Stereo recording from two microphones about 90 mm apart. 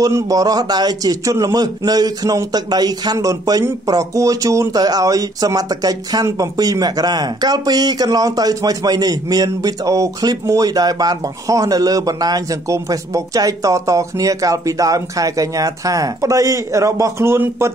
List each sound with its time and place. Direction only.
0.0 s a man's voice: 40° right (ahead or behind)